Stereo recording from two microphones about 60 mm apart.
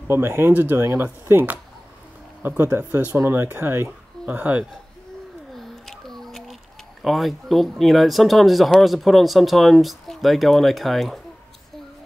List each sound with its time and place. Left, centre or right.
0.1 s speech: right
0.5 s speech: right
0.7 s speech: right
5.6 s a sound: centre
7.0 s speech: centre